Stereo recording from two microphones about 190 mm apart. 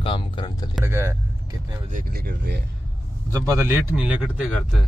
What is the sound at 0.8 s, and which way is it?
Speech, 15° right (ahead or behind).